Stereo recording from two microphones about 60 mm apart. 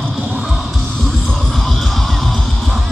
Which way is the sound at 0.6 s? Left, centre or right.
Centre.